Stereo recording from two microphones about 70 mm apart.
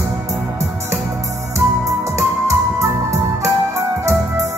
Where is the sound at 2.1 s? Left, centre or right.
Right.